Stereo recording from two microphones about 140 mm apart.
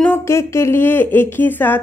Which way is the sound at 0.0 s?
15° left (ahead or behind).